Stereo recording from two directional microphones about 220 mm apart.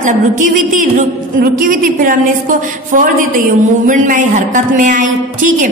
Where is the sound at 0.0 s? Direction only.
35° right (ahead or behind).